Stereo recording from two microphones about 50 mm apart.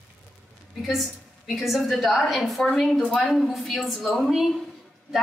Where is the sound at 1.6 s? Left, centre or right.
Centre.